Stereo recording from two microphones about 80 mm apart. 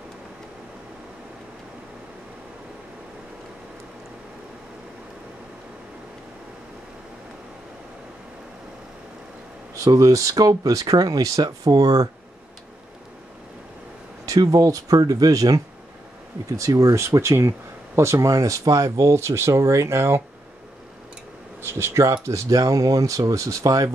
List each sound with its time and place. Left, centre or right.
9.8 s speech: right
14.2 s speech: right
21.6 s speech: right